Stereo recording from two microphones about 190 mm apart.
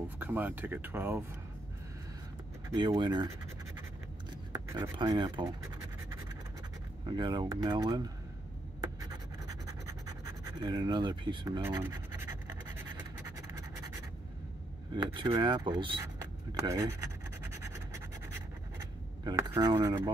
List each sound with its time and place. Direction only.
0.2 s speech: 10° right (ahead or behind)
2.7 s speech: 20° right (ahead or behind)
4.3 s a sound: 20° right (ahead or behind)
4.9 s speech: 25° right (ahead or behind)
7.1 s speech: 25° right (ahead or behind)
8.8 s scratch: 20° right (ahead or behind)
11.6 s scratch: 10° right (ahead or behind)
15.1 s speech: 25° right (ahead or behind)
16.0 s a sound: 15° right (ahead or behind)
17.6 s scratch: 15° right (ahead or behind)